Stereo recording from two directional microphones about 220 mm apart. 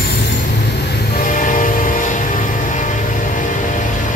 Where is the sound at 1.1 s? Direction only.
35° left (ahead or behind).